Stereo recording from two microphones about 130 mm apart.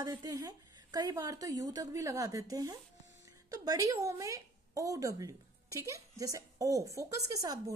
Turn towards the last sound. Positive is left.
turn(degrees=-25)  # may be behind; listen again after turning